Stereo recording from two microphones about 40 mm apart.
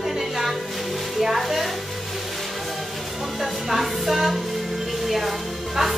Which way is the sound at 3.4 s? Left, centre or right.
Centre.